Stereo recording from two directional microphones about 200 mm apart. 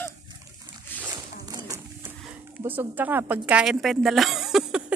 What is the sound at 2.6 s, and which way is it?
A woman's voice, 10° right (ahead or behind).